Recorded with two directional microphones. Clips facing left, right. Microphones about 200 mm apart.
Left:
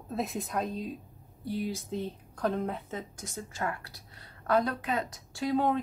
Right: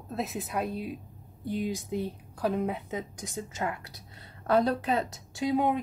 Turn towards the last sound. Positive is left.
turn(degrees=-15)  # may be behind; listen again after turning